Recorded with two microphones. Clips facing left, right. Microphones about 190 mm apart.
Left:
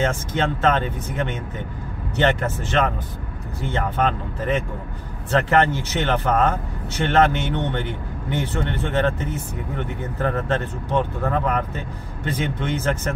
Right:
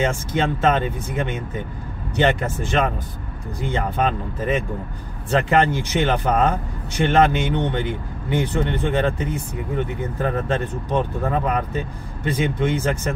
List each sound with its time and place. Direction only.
0.0 s a man's voice: 10° right (ahead or behind)